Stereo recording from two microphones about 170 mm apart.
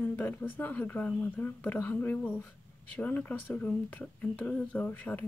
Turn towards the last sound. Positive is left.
turn(degrees=10)  # may be behind; listen again after turning